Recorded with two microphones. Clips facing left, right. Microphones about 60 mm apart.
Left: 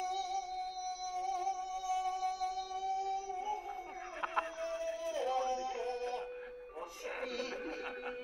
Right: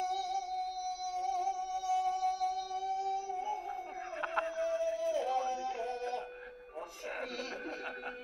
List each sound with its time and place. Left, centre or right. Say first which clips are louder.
0.0 s music: right 2 dB; centre
5.9 s music: right 1 dB; right